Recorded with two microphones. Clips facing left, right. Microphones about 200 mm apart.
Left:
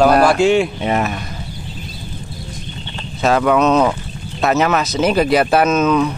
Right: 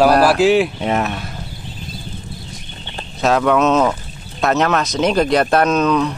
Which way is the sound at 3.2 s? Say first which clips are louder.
Left 1 dB; centre (ahead or behind).